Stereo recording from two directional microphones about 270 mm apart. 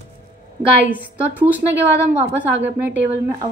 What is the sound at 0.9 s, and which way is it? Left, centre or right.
A woman's voice, centre.